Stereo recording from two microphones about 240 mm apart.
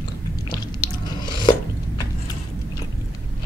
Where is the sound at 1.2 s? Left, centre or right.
Centre.